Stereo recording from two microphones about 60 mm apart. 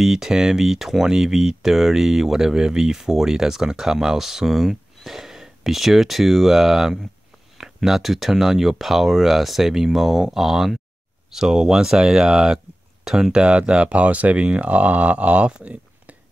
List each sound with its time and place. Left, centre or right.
0.0 s speech: centre; by 16.2 s right